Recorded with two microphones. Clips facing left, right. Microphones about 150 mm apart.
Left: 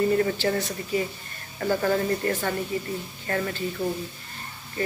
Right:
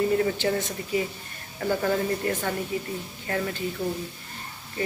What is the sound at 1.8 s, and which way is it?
A woman's voice, 5° right (ahead or behind).